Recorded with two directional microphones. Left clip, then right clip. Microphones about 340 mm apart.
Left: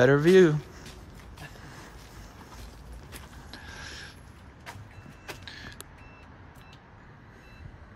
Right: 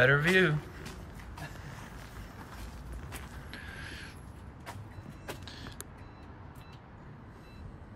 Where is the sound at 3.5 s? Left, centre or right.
Centre.